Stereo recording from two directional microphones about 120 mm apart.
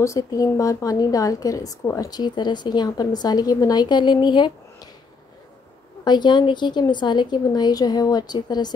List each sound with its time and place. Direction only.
0.0 s a woman's voice: 30° left (ahead or behind)
6.0 s a woman's voice: 40° left (ahead or behind)